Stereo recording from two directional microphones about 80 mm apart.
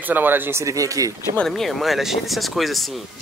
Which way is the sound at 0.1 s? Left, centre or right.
Right.